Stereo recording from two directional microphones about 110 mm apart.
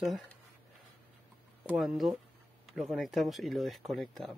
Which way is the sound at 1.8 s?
Centre (ahead or behind).